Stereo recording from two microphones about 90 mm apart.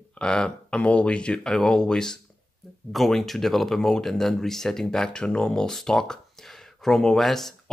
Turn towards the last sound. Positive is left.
turn(degrees=5)  # may be behind; listen again after turning